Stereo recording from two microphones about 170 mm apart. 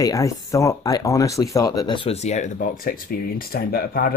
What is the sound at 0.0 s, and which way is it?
Speech, 20° left (ahead or behind).